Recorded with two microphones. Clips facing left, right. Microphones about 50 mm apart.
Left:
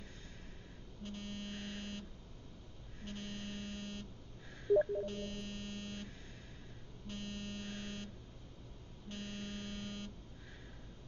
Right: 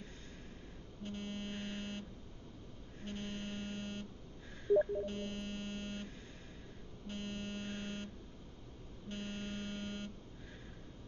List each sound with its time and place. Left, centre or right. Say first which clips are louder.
1.0 s buzzer: right 2 dB; right
3.1 s buzzer: right 2 dB; right
4.6 s telephone dialing: even; centre
5.0 s buzzer: right 1 dB; right
7.1 s buzzer: right 2 dB; right
9.1 s buzzer: right 2 dB; right